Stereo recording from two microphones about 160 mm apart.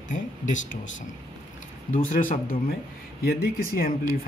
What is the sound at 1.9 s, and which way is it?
Speech, 55° left (ahead or behind).